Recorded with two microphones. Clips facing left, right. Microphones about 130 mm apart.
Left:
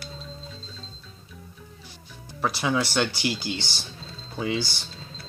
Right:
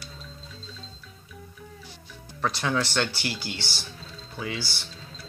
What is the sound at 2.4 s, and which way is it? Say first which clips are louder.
Speech: left 2 dB; 10° left (ahead or behind).